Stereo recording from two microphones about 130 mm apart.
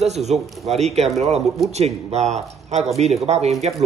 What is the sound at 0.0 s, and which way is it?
Speech, 60° right (ahead or behind).